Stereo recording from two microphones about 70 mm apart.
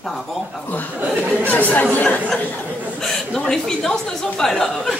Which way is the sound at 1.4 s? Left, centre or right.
Left.